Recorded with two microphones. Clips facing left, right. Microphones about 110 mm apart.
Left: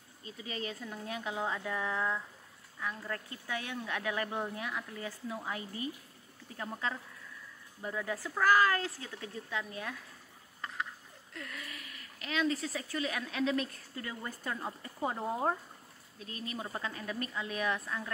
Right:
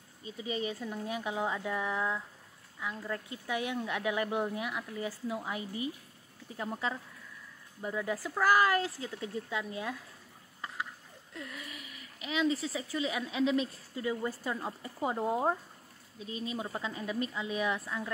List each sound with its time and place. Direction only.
0.4 s speech: 15° right (ahead or behind)
3.3 s speech: 15° right (ahead or behind)
11.3 s speech: 20° right (ahead or behind)